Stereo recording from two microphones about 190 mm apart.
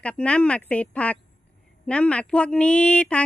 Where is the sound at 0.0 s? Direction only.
5° left (ahead or behind).